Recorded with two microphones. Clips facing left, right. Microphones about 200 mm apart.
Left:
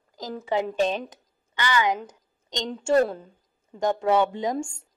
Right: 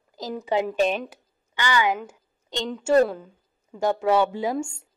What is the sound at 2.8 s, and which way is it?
A woman's voice, centre (ahead or behind).